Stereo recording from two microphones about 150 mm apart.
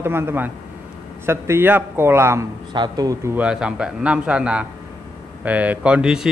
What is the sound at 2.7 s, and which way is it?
Speech, 30° right (ahead or behind).